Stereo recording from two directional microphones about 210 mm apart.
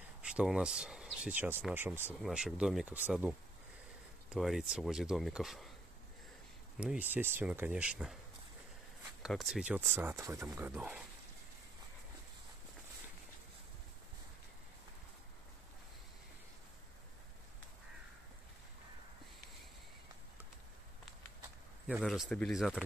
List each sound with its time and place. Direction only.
0.2 s speech: 5° right (ahead or behind)
6.8 s speech: 5° right (ahead or behind)
9.2 s speech: centre (ahead or behind)
21.8 s speech: 5° right (ahead or behind)